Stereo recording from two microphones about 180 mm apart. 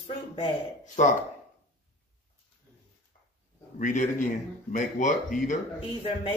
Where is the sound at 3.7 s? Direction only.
45° left (ahead or behind).